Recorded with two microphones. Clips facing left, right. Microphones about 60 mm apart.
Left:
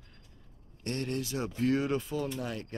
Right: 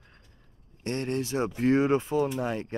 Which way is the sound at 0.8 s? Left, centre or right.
Right.